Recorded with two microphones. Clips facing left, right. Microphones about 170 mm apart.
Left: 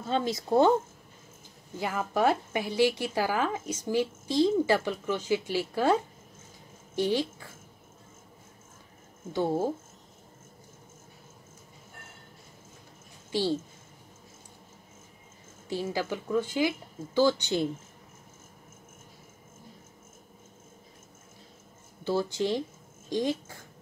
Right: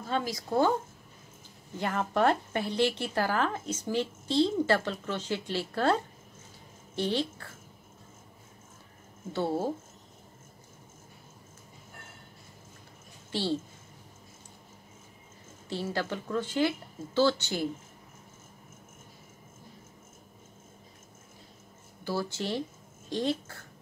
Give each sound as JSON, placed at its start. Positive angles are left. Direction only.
{"t": 0.0, "sound": "speech", "side_deg": 25}
{"t": 1.8, "sound": "a woman's voice", "side_deg": 5}
{"t": 9.3, "sound": "a woman's voice", "side_deg": 15}
{"t": 13.3, "sound": "a woman's voice", "side_deg": 10}
{"t": 15.7, "sound": "a woman's voice", "side_deg": 10}
{"t": 22.0, "sound": "a woman's voice", "side_deg": 20}